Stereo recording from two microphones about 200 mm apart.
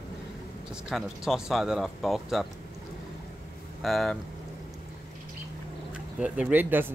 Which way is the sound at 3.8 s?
Centre (ahead or behind).